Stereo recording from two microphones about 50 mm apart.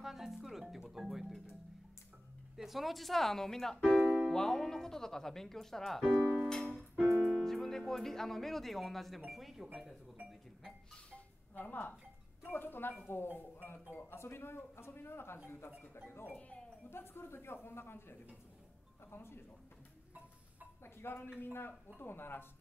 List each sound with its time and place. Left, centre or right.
0.0 s music: centre
2.5 s speech: centre
6.3 s music: centre
7.2 s speech: centre
11.5 s speech: left
16.3 s speech: left
16.9 s speech: left
20.8 s speech: left